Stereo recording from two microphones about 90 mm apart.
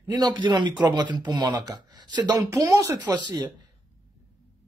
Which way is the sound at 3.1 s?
55° right (ahead or behind).